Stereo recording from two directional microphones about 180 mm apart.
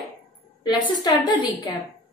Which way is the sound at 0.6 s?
25° left (ahead or behind).